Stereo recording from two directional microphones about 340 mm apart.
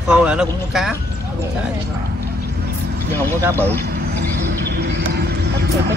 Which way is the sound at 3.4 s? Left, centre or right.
Centre.